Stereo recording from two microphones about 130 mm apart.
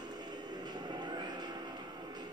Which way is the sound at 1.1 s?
35° right (ahead or behind).